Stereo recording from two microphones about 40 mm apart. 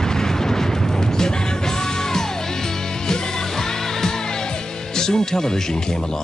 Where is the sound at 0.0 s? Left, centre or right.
Centre.